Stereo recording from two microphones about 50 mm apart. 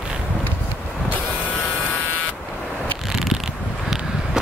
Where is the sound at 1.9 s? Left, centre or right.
Left.